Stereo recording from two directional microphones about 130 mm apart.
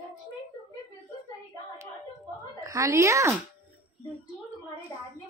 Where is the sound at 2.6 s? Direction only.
25° right (ahead or behind).